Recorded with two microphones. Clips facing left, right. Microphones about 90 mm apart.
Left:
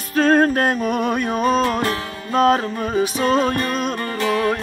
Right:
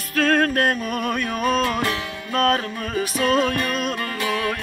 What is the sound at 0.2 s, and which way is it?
Music, 25° left (ahead or behind).